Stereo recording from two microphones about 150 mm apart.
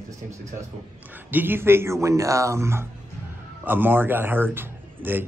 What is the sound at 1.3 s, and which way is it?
A man's voice, 15° right (ahead or behind).